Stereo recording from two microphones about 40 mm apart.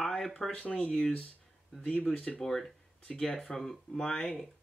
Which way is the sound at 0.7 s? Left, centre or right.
Left.